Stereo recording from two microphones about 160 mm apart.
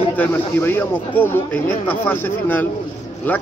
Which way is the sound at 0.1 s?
10° left (ahead or behind).